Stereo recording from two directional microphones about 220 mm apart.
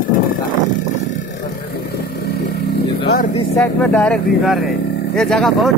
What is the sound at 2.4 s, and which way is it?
Vehicle, 45° left (ahead or behind).